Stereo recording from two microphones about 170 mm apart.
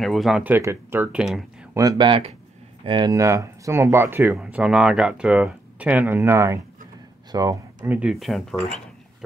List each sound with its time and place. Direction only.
0.0 s speech: centre (ahead or behind)
1.7 s speech: 20° right (ahead or behind); by 8.5 s centre (ahead or behind)